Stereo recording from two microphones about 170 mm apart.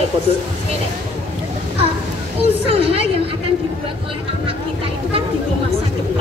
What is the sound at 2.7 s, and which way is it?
Speech, 35° right (ahead or behind).